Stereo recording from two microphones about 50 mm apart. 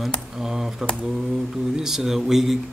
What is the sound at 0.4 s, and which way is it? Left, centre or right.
Speech, centre.